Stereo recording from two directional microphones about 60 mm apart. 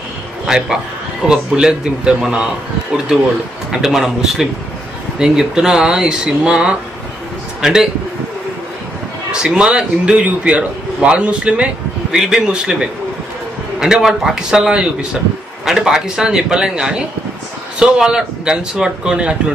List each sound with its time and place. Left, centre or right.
0.5 s speech: centre
9.3 s speech: centre
13.7 s speech: centre